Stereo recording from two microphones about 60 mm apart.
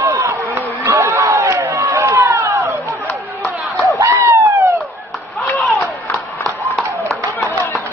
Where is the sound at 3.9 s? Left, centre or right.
Right.